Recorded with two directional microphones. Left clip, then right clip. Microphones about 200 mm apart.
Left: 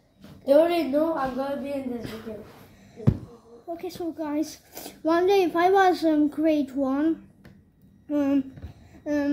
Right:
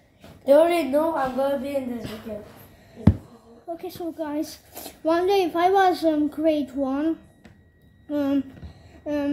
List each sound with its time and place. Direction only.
0.5 s a woman's voice: 25° right (ahead or behind)
3.7 s a child's voice: 5° left (ahead or behind)
9.0 s a sound: 5° left (ahead or behind)